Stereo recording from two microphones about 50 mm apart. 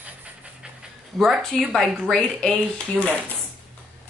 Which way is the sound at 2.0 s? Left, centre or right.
Centre.